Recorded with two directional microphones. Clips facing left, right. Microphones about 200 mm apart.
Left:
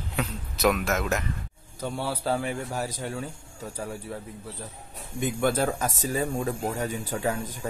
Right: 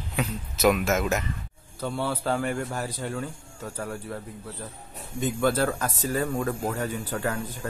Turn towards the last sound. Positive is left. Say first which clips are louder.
# left 1 dB
turn(degrees=15)  # may be behind; listen again after turning